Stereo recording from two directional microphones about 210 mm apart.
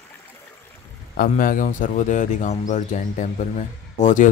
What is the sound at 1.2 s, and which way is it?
Speech, 40° left (ahead or behind).